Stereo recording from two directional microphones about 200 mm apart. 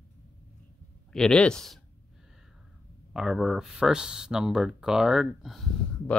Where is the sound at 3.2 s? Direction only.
Centre (ahead or behind).